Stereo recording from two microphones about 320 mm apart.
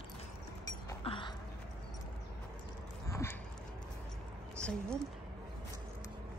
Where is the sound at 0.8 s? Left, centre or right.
Centre.